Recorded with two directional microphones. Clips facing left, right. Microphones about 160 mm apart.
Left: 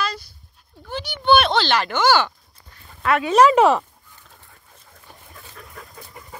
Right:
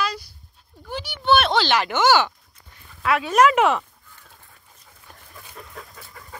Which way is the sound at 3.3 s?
35° left (ahead or behind).